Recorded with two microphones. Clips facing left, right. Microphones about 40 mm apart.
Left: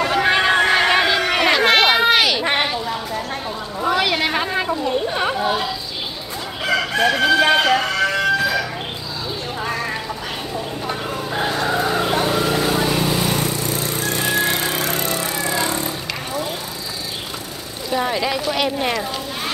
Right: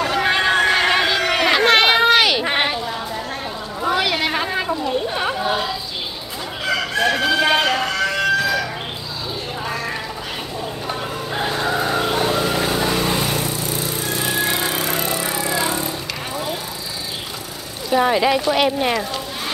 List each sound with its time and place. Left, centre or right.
0.0 s a sound: centre
3.8 s a sound: centre
6.7 s crowing: centre
11.4 s vehicle: centre
14.3 s music: centre
15.1 s music: centre
17.8 s speech: centre